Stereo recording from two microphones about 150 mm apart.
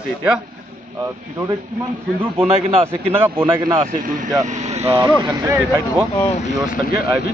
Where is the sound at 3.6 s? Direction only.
30° right (ahead or behind).